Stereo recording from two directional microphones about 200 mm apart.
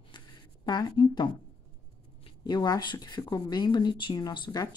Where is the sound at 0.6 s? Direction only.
20° left (ahead or behind).